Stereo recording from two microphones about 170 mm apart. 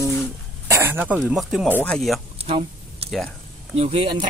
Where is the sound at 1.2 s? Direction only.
Centre (ahead or behind).